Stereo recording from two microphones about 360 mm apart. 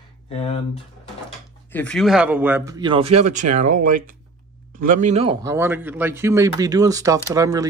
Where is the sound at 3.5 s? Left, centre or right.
Right.